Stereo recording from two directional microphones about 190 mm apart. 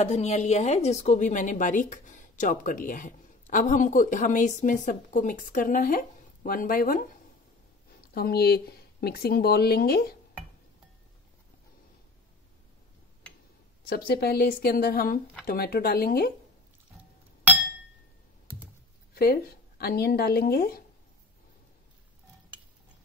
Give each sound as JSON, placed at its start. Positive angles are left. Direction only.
{"t": 0.0, "sound": "a woman's voice", "side_deg": 35}
{"t": 8.1, "sound": "speech", "side_deg": 55}
{"t": 13.8, "sound": "a woman's voice", "side_deg": 55}
{"t": 19.1, "sound": "a woman's voice", "side_deg": 55}